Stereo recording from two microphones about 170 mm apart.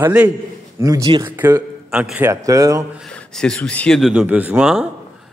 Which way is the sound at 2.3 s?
20° right (ahead or behind).